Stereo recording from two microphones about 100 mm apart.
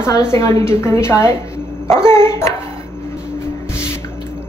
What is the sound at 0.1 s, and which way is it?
A woman's voice, 30° left (ahead or behind).